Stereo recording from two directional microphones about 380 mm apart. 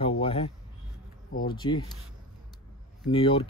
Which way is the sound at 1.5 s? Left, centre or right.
Centre.